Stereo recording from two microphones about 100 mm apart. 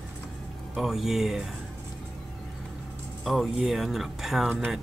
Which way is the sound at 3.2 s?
Centre (ahead or behind).